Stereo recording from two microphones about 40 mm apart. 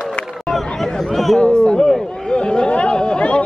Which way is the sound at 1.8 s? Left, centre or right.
Centre.